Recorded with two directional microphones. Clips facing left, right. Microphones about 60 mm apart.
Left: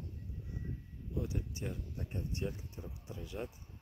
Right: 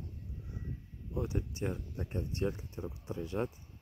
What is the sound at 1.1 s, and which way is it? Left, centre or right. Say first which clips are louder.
Speech: right 3 dB; right.